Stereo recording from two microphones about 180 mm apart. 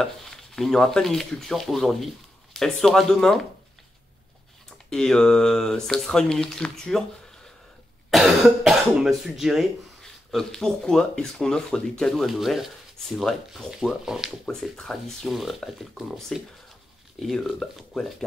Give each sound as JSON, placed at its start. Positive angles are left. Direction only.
{"t": 0.0, "sound": "speech", "side_deg": 0}
{"t": 4.6, "sound": "speech", "side_deg": 5}
{"t": 8.1, "sound": "speech", "side_deg": 0}